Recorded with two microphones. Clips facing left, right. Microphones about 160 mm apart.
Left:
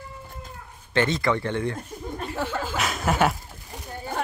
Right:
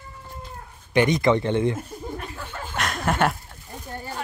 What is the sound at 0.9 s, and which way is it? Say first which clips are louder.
Speech: right 4 dB; 15° right (ahead or behind).